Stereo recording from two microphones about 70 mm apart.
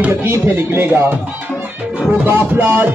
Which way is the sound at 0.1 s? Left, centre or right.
Right.